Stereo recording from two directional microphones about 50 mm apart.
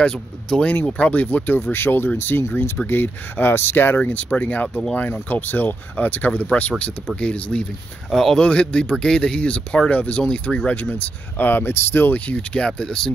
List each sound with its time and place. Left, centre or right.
0.0 s speech: centre
0.9 s speech: left
4.1 s speech: left
8.1 s speech: centre
8.5 s speech: left
12.1 s speech: left